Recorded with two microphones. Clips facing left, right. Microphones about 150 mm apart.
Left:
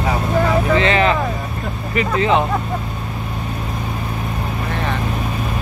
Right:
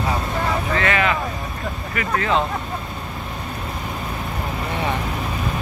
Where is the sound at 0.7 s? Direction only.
25° left (ahead or behind).